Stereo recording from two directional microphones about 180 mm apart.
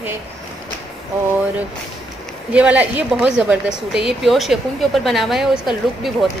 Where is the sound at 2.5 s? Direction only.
10° right (ahead or behind).